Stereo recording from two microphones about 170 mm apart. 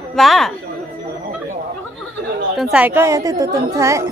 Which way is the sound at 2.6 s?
5° right (ahead or behind).